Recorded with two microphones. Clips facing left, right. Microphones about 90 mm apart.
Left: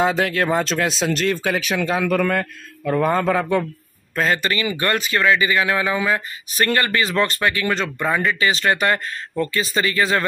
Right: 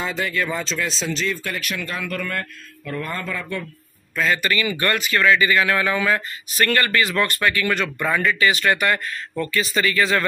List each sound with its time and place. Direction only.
0.0 s speech: 65° left (ahead or behind)
4.1 s a man's voice: 35° left (ahead or behind)